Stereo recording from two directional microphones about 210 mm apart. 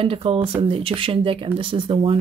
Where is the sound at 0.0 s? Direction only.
25° right (ahead or behind).